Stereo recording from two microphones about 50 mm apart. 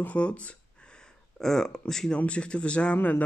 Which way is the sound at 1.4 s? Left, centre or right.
Centre.